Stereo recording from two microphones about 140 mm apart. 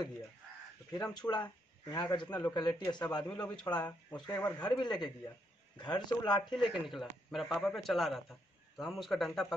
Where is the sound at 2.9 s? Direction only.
30° left (ahead or behind).